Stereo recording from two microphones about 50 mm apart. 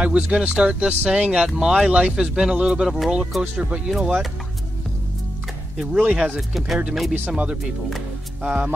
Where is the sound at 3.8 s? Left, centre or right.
Centre.